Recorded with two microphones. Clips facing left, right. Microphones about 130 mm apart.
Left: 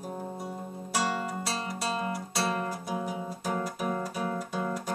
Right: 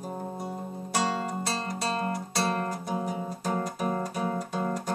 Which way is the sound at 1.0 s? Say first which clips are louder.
Right 1 dB; 30° right (ahead or behind).